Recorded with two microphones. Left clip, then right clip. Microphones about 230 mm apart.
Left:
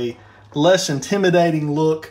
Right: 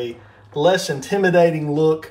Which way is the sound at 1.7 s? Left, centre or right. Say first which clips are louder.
Right 1 dB; centre.